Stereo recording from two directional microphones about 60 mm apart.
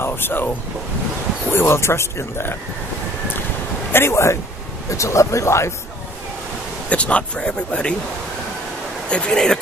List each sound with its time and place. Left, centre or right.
0.0 s speech: left
1.5 s speech: left
3.9 s speech: left
6.9 s speech: left
9.1 s speech: centre